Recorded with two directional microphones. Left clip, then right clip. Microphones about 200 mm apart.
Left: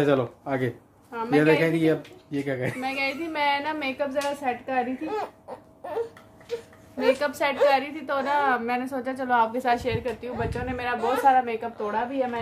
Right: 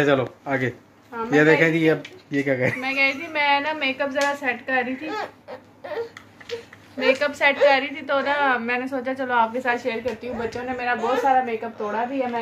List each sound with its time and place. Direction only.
0.0 s speech: 10° left (ahead or behind)
1.6 s speech: 20° right (ahead or behind)
2.8 s a woman's voice: 60° left (ahead or behind)
4.4 s a woman's voice: 50° left (ahead or behind)
7.1 s a woman's voice: 55° left (ahead or behind)
10.2 s speech: 5° right (ahead or behind)
11.2 s speech: 15° left (ahead or behind)